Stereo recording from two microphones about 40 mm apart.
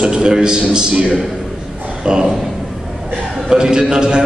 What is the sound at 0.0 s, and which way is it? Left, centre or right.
A man's voice, centre.